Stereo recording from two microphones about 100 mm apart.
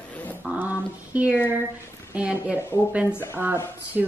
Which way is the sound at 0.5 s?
15° right (ahead or behind).